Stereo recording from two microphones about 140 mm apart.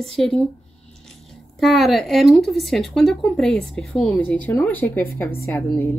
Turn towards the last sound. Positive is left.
turn(degrees=15)  # may be behind; listen again after turning